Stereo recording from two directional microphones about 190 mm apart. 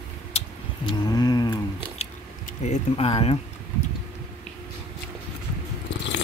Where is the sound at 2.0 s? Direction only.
35° left (ahead or behind).